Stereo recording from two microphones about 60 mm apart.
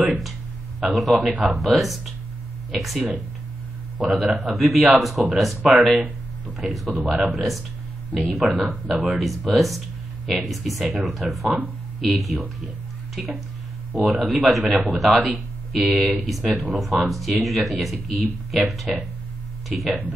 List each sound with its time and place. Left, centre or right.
0.7 s a man's voice: centre
5.6 s speech: centre
5.9 s a sound: right
6.6 s speech: centre
7.0 s speech: right
7.2 s speech: centre